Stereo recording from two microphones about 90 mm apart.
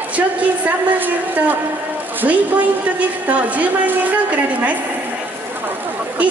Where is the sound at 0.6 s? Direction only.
20° right (ahead or behind).